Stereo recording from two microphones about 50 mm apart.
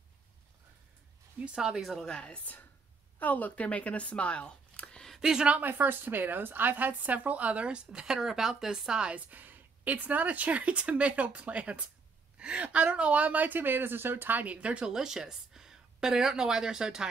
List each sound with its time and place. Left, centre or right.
1.5 s speech: centre
2.0 s a woman's voice: centre
2.3 s a woman's voice: left; by 5.1 s centre
5.2 s speech: centre
5.5 s speech: right; by 9.1 s centre
9.1 s a woman's voice: right
14.9 s a woman's voice: centre